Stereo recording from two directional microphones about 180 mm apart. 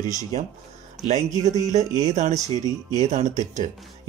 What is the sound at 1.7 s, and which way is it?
Speech, 40° right (ahead or behind).